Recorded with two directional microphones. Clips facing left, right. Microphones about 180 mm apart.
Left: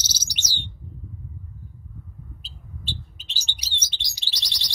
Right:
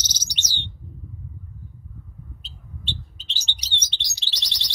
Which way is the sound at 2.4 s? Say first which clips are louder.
Right 1 dB; 10° left (ahead or behind).